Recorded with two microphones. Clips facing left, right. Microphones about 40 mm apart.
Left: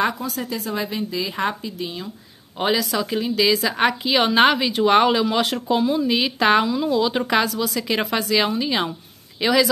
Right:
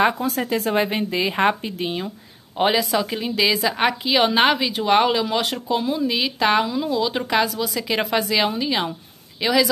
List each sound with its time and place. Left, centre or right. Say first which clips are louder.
0.2 s a woman's voice: right 5 dB; right
2.5 s a woman's voice: right 2 dB; centre